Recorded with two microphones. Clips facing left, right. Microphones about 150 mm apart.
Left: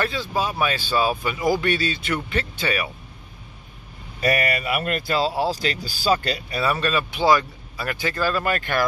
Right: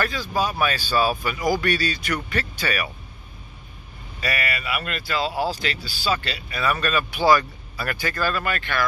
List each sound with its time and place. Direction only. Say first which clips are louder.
0.0 s speech: even; 25° left (ahead or behind)
4.2 s speech: left 6 dB; 45° left (ahead or behind)
6.6 s speech: even; 25° left (ahead or behind)
8.4 s speech: left 3 dB; 40° left (ahead or behind)